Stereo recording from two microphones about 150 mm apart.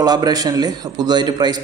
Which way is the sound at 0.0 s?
25° right (ahead or behind).